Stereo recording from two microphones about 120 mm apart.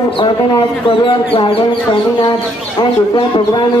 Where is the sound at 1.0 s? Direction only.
45° left (ahead or behind).